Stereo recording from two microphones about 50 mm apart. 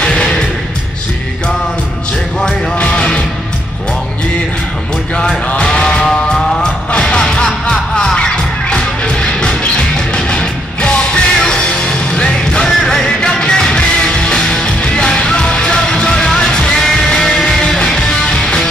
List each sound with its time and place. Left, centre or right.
0.0 s music: centre
2.4 s music: centre
5.1 s music: centre